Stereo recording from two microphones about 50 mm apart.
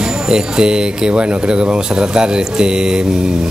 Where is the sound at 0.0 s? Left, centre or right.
Centre.